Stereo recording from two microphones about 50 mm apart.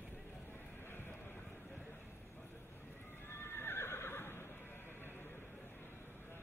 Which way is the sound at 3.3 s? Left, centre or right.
Left.